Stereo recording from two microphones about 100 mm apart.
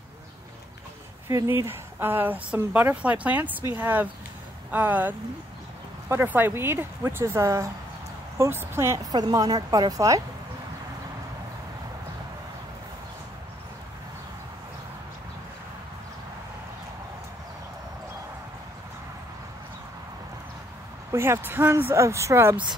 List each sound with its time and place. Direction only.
1.3 s a woman's voice: 30° right (ahead or behind)
6.2 s a woman's voice: 20° right (ahead or behind)
21.1 s a woman's voice: 25° right (ahead or behind)